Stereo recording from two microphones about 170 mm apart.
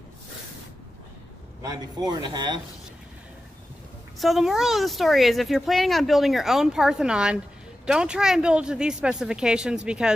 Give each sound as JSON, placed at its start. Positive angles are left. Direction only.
{"t": 1.6, "sound": "speech", "side_deg": -20}
{"t": 4.2, "sound": "speech", "side_deg": 0}